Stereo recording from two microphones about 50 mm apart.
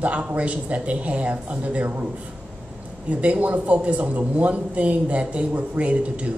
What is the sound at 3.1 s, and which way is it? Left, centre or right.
A man's voice, right.